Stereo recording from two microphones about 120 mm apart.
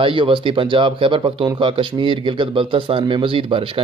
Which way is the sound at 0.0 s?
45° right (ahead or behind).